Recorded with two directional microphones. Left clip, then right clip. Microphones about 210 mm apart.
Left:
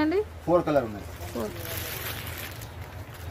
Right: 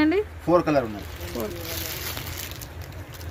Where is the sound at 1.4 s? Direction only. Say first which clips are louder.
Right 2 dB; 5° left (ahead or behind).